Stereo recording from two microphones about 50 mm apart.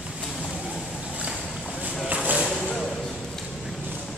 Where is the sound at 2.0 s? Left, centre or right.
Right.